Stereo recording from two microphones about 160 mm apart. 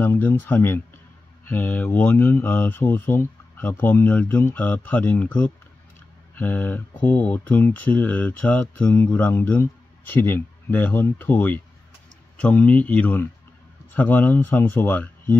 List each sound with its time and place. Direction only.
0.0 s speech: 15° left (ahead or behind)